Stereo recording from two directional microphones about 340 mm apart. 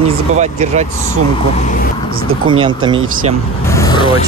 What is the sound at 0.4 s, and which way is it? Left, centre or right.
Speech, centre.